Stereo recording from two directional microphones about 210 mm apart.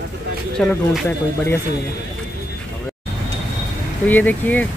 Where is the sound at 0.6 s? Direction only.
5° left (ahead or behind).